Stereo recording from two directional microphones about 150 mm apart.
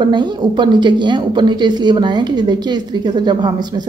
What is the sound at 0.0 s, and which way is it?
Speech, 30° right (ahead or behind).